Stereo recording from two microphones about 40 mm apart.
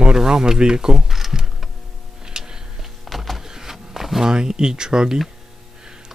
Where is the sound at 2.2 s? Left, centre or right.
Centre.